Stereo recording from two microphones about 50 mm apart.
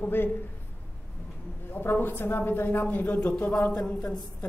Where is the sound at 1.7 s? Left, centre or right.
Left.